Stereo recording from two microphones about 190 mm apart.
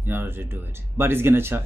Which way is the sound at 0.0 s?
10° right (ahead or behind).